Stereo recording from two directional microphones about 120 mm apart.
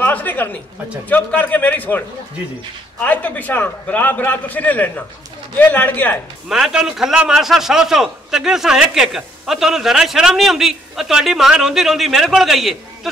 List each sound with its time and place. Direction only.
0.0 s a woman's voice: 15° left (ahead or behind)
6.5 s a man's voice: 5° right (ahead or behind)